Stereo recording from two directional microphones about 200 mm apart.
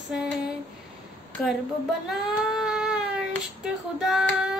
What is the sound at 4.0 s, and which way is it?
Child singing, centre (ahead or behind).